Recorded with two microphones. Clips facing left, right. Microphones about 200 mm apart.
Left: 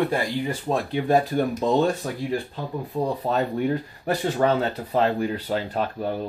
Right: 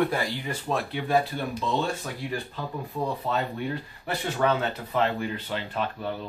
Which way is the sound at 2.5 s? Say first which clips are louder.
Left 4 dB; 35° left (ahead or behind).